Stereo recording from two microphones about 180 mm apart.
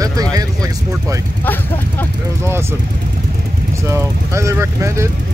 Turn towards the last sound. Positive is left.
turn(degrees=-15)  # may be behind; listen again after turning